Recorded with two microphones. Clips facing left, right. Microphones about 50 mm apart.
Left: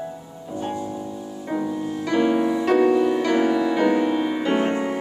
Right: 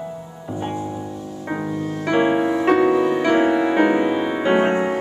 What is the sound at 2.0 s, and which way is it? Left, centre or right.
Music, right.